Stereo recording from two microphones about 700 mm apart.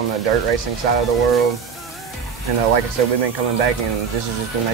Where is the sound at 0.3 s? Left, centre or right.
Right.